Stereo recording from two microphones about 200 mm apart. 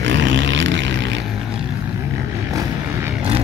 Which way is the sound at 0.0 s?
65° right (ahead or behind).